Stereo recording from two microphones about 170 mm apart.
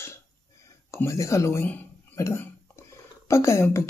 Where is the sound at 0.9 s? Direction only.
15° left (ahead or behind).